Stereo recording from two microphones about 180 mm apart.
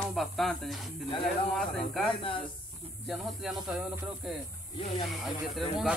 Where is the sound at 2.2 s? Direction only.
30° left (ahead or behind).